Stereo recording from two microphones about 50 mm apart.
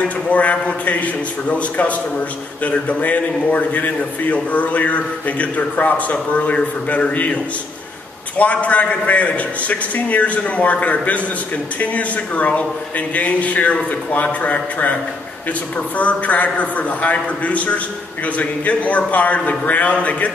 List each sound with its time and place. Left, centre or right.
0.0 s a man's voice: left
8.4 s a man's voice: left
16.0 s a man's voice: left